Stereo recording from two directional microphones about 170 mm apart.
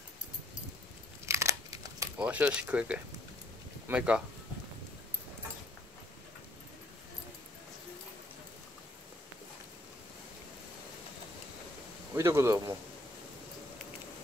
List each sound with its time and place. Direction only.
1.2 s crumpling: 15° right (ahead or behind)
2.1 s speech: 5° right (ahead or behind)
12.2 s speech: 15° right (ahead or behind)